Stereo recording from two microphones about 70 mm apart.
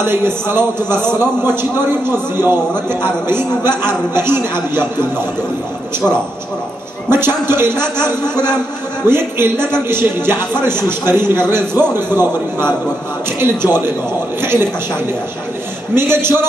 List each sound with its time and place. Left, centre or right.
0.0 s a man's voice: right
7.1 s a man's voice: right
9.0 s a man's voice: right
15.9 s a man's voice: right